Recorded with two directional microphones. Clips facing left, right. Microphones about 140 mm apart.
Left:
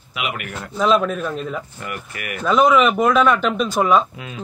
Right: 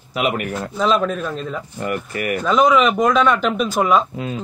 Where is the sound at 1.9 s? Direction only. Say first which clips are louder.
Right 10 dB; 40° right (ahead or behind).